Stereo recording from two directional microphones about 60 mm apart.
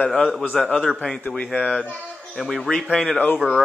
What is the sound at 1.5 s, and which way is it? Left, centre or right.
Speech, centre.